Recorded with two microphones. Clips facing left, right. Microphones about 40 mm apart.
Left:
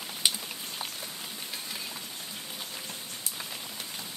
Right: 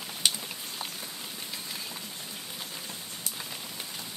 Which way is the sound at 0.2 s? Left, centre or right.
Centre.